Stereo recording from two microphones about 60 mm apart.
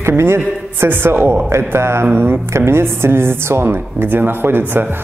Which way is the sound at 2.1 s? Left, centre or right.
Right.